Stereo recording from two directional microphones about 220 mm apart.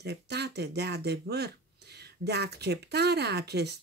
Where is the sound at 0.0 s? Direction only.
50° right (ahead or behind).